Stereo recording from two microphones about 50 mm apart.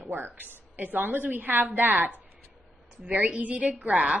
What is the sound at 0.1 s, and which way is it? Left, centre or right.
A woman's voice, right.